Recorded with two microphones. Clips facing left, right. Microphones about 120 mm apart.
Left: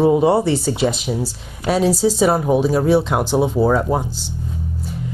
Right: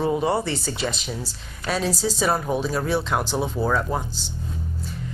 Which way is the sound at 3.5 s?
35° left (ahead or behind).